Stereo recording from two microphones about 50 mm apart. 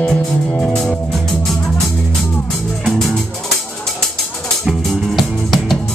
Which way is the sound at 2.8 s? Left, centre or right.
Centre.